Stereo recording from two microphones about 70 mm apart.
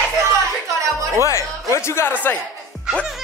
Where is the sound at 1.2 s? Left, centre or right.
Left.